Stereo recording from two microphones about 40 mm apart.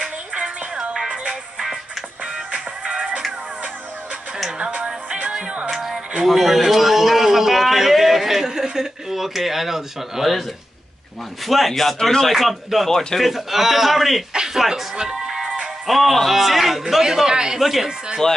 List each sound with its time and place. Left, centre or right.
0.4 s music: right
4.6 s music: right
5.7 s music: centre
6.2 s a sound: centre
11.4 s a man's voice: centre
13.3 s a man's voice: centre
14.3 s speech: centre
14.6 s a man's voice: centre
15.0 s music: centre
15.9 s a man's voice: centre
17.6 s a man's voice: centre
17.8 s speech: centre